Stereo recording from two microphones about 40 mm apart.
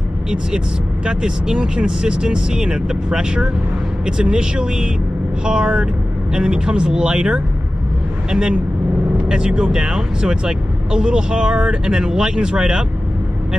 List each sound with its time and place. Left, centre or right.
1.0 s speech: right